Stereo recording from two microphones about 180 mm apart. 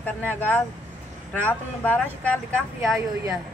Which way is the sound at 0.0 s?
10° left (ahead or behind).